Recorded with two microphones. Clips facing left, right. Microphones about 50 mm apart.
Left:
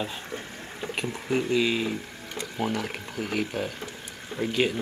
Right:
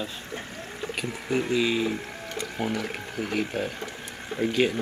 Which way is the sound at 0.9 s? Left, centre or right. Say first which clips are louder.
Even; centre.